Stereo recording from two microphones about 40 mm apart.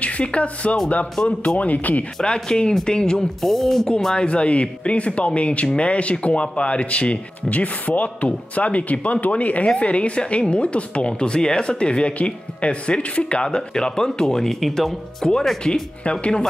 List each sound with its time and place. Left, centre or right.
0.0 s speech: left
1.2 s speech: centre
1.6 s speech: left
2.4 s speech: left
3.4 s speech: centre
4.1 s speech: left; by 15.3 s centre
15.3 s speech: centre